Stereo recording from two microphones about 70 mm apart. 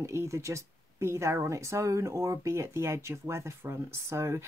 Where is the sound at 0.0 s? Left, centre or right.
Right.